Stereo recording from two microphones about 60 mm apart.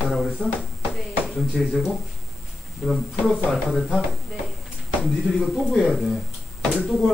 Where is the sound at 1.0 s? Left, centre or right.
Centre.